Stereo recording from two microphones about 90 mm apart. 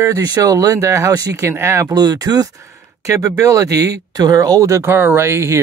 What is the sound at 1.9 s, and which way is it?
Speech, 45° right (ahead or behind).